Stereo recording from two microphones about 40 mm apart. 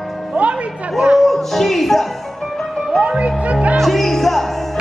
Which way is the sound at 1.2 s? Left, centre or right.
Centre.